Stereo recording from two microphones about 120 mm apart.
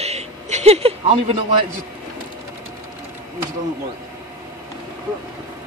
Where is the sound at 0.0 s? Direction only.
65° right (ahead or behind).